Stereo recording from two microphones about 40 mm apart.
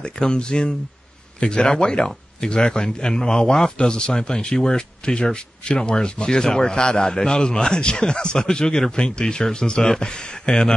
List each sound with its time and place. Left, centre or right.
0.0 s speech: left